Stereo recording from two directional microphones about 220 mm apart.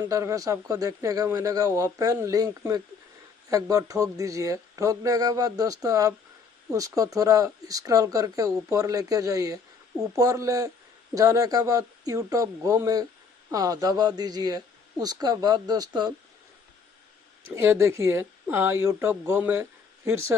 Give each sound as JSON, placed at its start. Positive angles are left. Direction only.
{"t": 0.1, "sound": "speech", "side_deg": -15}
{"t": 17.6, "sound": "speech", "side_deg": -10}